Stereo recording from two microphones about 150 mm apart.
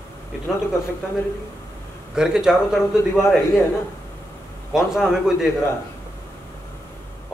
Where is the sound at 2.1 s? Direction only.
5° right (ahead or behind).